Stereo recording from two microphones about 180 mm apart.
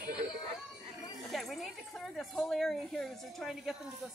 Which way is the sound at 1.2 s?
Centre (ahead or behind).